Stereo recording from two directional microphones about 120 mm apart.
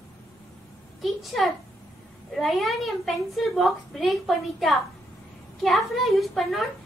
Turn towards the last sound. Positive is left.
turn(degrees=0)  # may be behind; listen again after turning